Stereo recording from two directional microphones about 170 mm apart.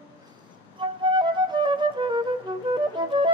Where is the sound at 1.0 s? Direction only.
25° right (ahead or behind).